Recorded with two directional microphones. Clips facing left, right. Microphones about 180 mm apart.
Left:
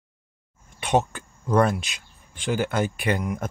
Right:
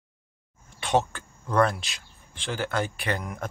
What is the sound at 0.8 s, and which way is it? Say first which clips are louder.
Speech: left 2 dB; 20° left (ahead or behind).